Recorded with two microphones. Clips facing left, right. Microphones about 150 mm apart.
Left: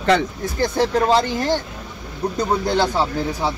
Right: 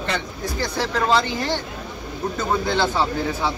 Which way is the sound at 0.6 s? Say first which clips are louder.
Left 6 dB; 50° left (ahead or behind).